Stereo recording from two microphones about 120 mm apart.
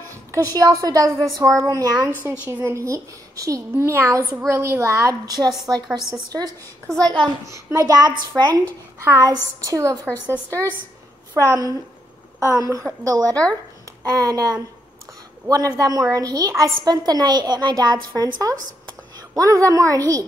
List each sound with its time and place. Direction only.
0.3 s a woman's voice: 30° right (ahead or behind)
2.2 s a woman's voice: 15° right (ahead or behind)
6.9 s a woman's voice: 5° left (ahead or behind)
7.4 s a woman's voice: 25° right (ahead or behind)
9.0 s a woman's voice: 20° right (ahead or behind)